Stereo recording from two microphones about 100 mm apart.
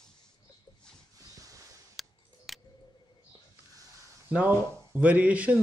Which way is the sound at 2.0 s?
Centre (ahead or behind).